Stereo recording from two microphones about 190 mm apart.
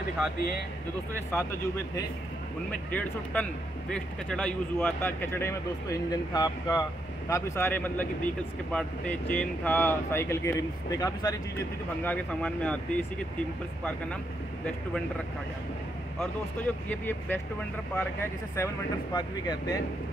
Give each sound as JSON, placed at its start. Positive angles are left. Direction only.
{"t": 1.3, "sound": "speech", "side_deg": 15}
{"t": 16.9, "sound": "speech", "side_deg": 10}